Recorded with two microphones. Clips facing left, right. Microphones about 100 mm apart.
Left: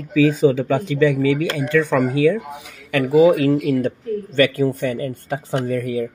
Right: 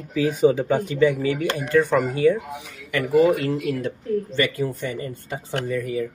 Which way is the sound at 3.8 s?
60° left (ahead or behind).